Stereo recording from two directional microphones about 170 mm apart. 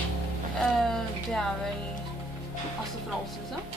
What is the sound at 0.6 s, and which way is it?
Speech, 5° left (ahead or behind).